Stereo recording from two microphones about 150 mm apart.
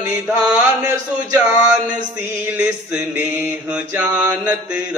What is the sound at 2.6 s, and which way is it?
Mantra, 10° right (ahead or behind).